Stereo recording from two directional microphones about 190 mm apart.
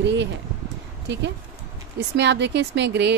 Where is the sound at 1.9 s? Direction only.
65° right (ahead or behind).